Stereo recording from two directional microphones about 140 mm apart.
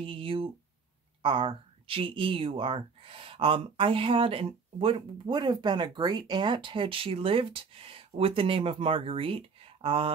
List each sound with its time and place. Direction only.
0.0 s speech: 40° right (ahead or behind)